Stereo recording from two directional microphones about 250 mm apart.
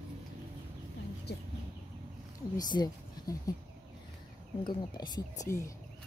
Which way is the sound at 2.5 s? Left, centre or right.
Centre.